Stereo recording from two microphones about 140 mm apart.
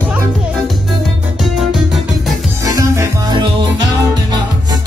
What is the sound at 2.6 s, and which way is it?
Music, 25° right (ahead or behind).